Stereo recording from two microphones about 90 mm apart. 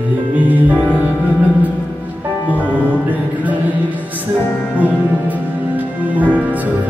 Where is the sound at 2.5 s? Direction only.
15° right (ahead or behind).